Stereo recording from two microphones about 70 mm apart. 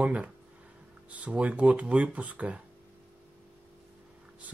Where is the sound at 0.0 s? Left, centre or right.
Centre.